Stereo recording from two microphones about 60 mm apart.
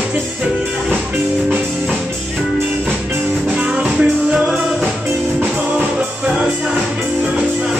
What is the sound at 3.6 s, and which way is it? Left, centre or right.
Music, centre.